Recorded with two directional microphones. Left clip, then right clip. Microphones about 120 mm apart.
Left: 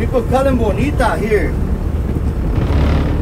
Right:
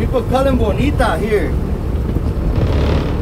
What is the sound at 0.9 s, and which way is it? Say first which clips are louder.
Speech: left 1 dB; 20° right (ahead or behind).